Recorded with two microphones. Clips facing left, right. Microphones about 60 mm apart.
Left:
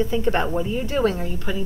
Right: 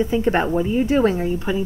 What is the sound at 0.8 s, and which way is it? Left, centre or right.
Speech, right.